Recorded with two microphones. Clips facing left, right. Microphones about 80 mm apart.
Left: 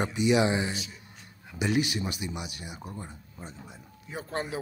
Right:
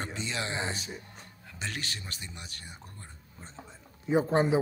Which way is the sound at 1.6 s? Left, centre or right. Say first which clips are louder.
Left 11 dB; centre.